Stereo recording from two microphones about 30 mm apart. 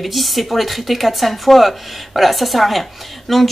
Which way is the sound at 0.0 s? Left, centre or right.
Centre.